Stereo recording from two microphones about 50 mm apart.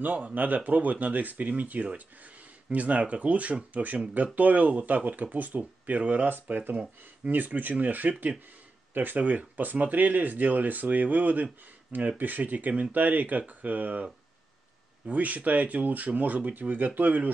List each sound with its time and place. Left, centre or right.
0.0 s speech: right
15.0 s speech: right